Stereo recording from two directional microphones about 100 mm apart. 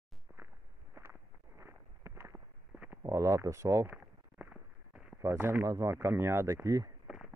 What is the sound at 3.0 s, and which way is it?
Speech, 30° right (ahead or behind).